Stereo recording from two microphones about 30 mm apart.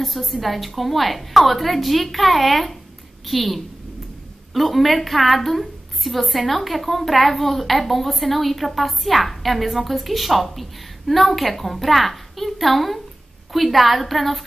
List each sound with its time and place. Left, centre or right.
0.0 s a woman's voice: centre